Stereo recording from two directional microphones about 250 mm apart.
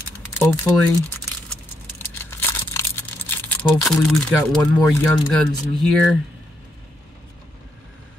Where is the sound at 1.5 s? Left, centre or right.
Centre.